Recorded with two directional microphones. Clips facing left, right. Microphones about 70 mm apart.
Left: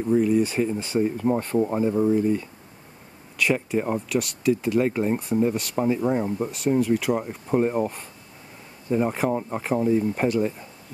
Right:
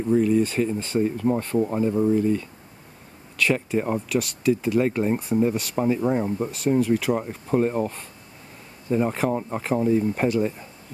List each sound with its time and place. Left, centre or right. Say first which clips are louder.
0.2 s speech: even; centre
7.6 s speech: even; centre